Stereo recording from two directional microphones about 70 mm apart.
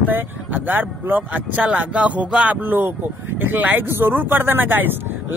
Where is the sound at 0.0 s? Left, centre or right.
Right.